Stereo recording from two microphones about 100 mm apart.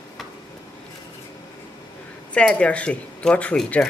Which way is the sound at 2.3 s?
10° left (ahead or behind).